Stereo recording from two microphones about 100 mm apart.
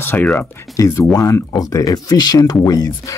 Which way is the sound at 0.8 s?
35° left (ahead or behind).